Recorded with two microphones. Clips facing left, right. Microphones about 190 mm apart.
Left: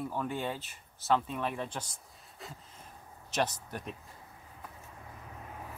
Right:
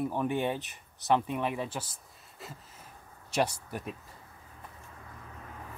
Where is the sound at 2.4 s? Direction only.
Centre (ahead or behind).